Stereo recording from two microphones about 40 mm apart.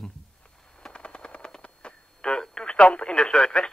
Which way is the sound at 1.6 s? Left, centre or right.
Left.